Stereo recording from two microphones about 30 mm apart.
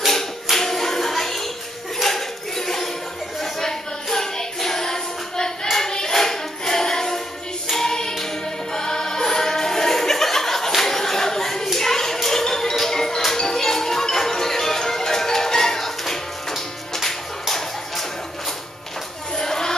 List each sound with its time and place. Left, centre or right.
0.1 s music: centre
2.0 s a sound: centre
3.6 s child singing: centre
7.7 s choir: centre
8.7 s music: left
10.8 s a sound: centre
12.2 s music: centre
19.3 s music: left